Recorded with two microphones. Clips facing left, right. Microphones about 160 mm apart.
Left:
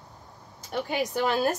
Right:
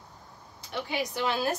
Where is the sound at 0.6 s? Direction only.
45° left (ahead or behind).